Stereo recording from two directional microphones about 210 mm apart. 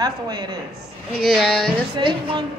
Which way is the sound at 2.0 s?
25° right (ahead or behind).